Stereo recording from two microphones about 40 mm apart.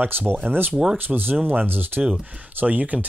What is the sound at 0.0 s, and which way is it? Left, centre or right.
Speech, right.